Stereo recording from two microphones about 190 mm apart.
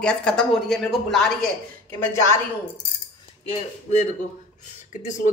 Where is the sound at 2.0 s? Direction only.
15° left (ahead or behind).